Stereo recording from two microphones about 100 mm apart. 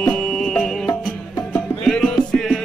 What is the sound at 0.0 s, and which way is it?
Music, 5° left (ahead or behind).